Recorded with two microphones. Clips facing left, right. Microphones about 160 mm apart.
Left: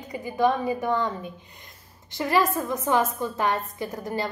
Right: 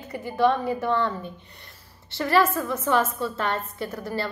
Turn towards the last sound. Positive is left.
turn(degrees=15)  # may be behind; listen again after turning